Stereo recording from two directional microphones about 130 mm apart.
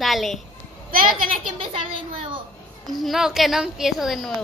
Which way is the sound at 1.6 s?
45° right (ahead or behind).